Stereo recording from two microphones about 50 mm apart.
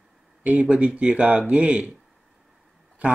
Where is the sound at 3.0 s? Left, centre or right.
Right.